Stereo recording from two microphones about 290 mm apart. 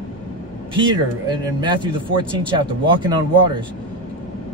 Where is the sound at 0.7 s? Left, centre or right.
Centre.